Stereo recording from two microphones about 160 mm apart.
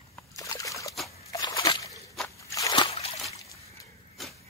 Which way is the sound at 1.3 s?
25° left (ahead or behind).